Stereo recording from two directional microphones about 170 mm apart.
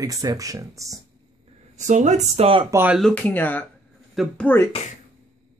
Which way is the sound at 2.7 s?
10° right (ahead or behind).